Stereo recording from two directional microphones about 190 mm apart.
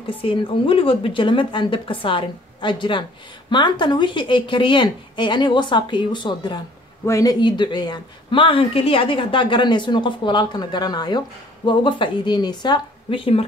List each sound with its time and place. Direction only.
0.0 s speech: 30° left (ahead or behind)